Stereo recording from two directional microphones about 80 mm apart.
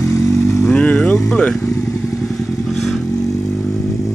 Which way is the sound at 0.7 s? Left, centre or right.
Centre.